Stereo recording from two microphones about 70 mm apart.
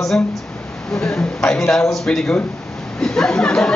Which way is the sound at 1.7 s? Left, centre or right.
Centre.